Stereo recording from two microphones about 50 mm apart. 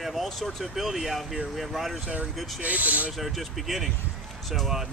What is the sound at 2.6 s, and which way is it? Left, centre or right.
Speech, right.